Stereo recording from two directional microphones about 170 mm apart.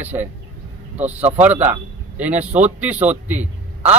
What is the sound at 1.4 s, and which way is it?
Speech, 10° right (ahead or behind).